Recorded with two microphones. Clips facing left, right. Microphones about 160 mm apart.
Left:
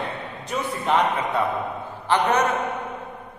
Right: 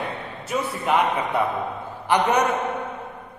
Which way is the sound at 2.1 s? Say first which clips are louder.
Right 1 dB; 10° right (ahead or behind).